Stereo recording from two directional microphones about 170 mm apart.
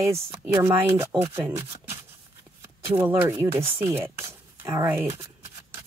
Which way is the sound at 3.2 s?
15° right (ahead or behind).